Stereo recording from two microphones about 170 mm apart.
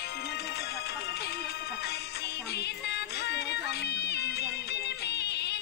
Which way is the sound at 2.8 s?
80° left.